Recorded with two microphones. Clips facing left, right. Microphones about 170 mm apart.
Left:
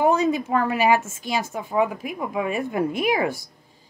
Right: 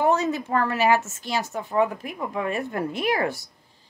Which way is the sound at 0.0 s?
10° left (ahead or behind).